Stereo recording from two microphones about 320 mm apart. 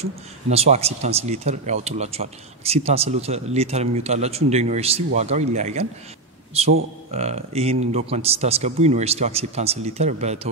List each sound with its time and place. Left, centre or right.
0.0 s speech: centre